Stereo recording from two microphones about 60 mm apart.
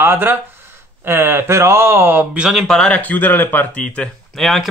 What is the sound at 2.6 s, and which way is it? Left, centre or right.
Speech, centre.